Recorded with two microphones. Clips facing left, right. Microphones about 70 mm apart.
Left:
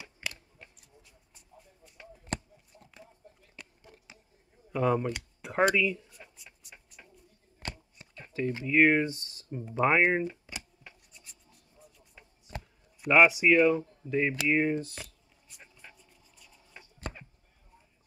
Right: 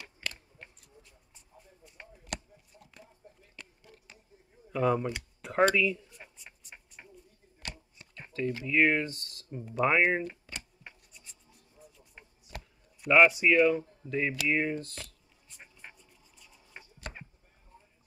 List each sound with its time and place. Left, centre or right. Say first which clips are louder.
0.2 s chewing: even; centre
2.2 s a sound: left 4 dB; left
4.7 s speech: even; centre
6.3 s a sound: right 2 dB; centre
7.6 s whispering: left 3 dB; left
8.6 s speech: left 3 dB; centre
11.8 s a sound: right 2 dB; centre
13.0 s speech: even; centre
16.0 s scratch: even; centre